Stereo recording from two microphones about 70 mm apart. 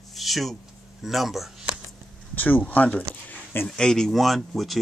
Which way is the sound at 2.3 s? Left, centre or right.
Left.